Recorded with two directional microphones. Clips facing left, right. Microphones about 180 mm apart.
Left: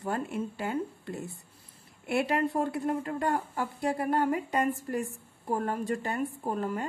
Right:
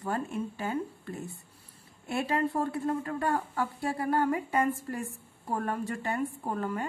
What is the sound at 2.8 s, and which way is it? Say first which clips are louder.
Speech: left 1 dB; 20° left (ahead or behind).